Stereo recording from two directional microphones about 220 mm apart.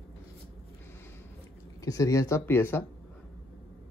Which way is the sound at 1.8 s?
15° left (ahead or behind).